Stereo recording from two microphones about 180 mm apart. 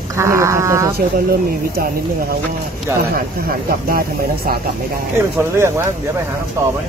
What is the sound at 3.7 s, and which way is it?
Speech, 55° right (ahead or behind).